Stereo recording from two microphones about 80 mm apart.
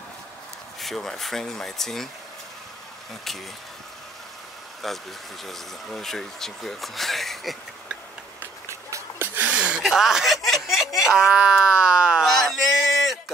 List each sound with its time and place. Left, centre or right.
0.7 s speech: centre
4.8 s speech: centre
8.6 s run: right
9.3 s a sound: centre
9.8 s speech: centre
12.3 s a sound: centre